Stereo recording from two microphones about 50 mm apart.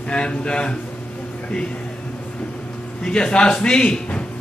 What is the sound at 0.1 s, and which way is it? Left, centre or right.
Speech, centre.